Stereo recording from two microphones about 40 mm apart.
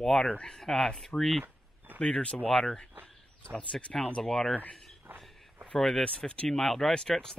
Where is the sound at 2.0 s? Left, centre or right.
Left.